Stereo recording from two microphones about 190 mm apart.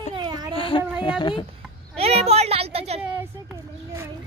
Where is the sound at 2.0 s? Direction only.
30° right (ahead or behind).